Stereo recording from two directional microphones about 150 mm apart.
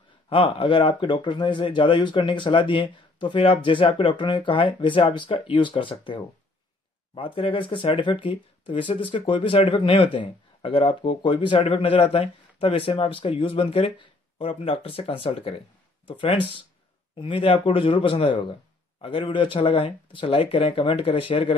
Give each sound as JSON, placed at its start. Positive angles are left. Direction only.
{"t": 0.3, "sound": "speech", "side_deg": 35}